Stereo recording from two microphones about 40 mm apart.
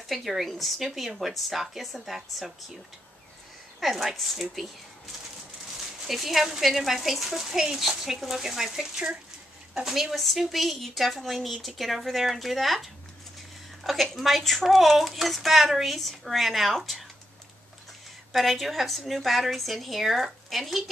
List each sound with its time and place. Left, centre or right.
0.1 s speech: centre
3.8 s speech: centre
6.0 s speech: centre
18.3 s speech: centre